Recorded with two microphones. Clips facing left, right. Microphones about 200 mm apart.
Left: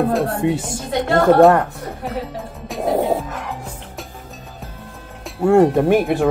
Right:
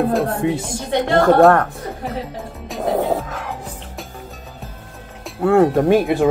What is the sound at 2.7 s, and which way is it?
Music, 5° left (ahead or behind).